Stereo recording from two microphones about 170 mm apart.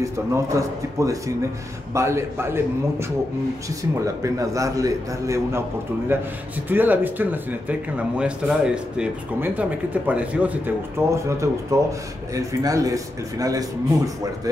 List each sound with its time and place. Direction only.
0.0 s speech: 20° right (ahead or behind)